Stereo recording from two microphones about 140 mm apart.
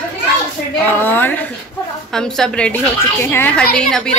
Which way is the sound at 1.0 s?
15° left (ahead or behind).